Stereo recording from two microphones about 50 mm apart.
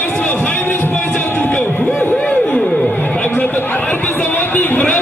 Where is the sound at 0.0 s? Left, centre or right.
Left.